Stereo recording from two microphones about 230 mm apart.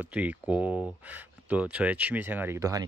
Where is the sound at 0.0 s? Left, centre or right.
Centre.